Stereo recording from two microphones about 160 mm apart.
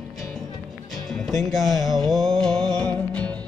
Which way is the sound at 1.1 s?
Centre (ahead or behind).